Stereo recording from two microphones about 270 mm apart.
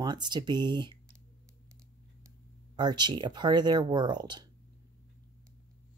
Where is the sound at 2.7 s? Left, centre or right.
Centre.